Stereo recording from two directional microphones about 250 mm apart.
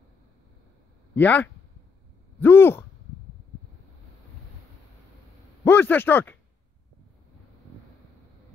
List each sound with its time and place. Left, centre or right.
1.1 s speech: centre
5.6 s speech: centre